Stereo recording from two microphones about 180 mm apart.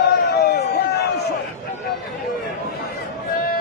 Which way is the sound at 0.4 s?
60° left (ahead or behind).